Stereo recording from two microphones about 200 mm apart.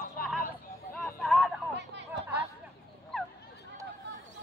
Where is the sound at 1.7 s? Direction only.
60° right (ahead or behind).